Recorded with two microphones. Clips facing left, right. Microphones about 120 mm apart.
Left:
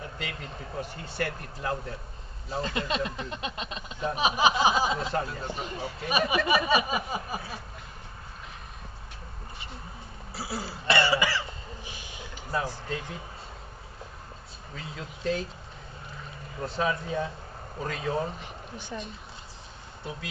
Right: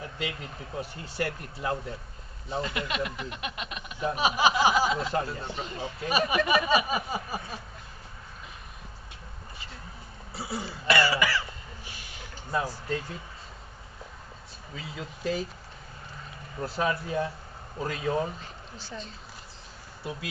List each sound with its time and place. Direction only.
0.2 s speech: 5° right (ahead or behind)
2.6 s speech: 30° left (ahead or behind)
4.1 s speech: 20° left (ahead or behind)
10.3 s speech: 5° left (ahead or behind)
10.9 s throat clearing: 25° left (ahead or behind)
12.4 s speech: centre (ahead or behind)
14.8 s speech: 5° right (ahead or behind)
16.6 s speech: 5° right (ahead or behind)
18.4 s speech: 20° left (ahead or behind)
20.0 s speech: 5° right (ahead or behind)